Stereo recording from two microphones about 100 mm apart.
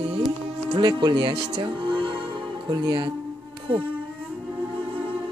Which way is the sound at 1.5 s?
50° right (ahead or behind).